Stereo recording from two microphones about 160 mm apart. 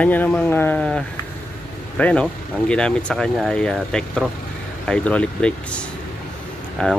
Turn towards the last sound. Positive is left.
turn(degrees=5)  # may be behind; listen again after turning